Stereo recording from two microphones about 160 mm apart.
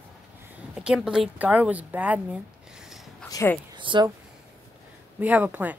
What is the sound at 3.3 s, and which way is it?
Speech, 15° left (ahead or behind).